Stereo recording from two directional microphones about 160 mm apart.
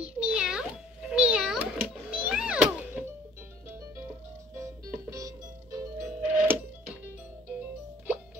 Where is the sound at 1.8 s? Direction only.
10° right (ahead or behind).